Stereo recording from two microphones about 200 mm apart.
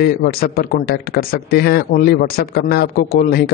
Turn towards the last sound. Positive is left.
turn(degrees=50)  # may be behind; listen again after turning